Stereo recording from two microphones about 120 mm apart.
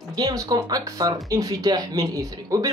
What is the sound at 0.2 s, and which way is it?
Speech, 30° right (ahead or behind).